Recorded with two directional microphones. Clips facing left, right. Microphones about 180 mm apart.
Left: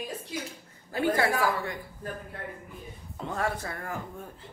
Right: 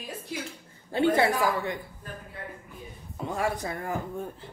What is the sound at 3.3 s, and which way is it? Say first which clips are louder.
Speech: right 2 dB; 10° right (ahead or behind).